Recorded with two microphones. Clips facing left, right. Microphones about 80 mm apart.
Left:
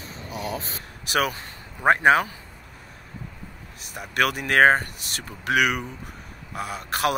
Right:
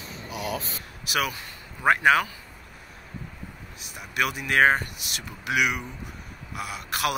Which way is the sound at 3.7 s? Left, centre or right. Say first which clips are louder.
Left 4 dB; left.